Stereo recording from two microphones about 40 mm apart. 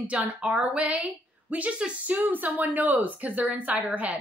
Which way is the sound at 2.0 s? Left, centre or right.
Right.